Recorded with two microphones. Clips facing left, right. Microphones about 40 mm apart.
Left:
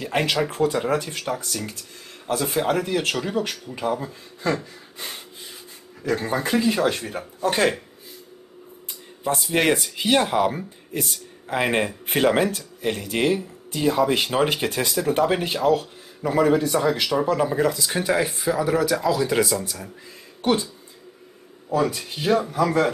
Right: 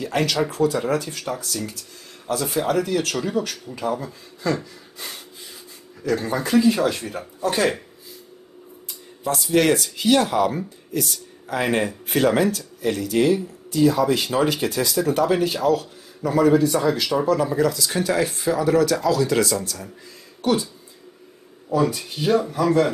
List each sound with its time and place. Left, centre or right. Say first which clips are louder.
0.0 s a sound: right 1 dB; left
0.5 s speech: right 1 dB; left
4.9 s rub: left 1 dB; left
6.2 s speech: even; left
6.5 s speech: right 4 dB; centre
7.4 s speech: even; left
9.2 s speech: right 2 dB; left
18.3 s speech: right 2 dB; centre
20.4 s speech: even; left
21.6 s speech: right 1 dB; centre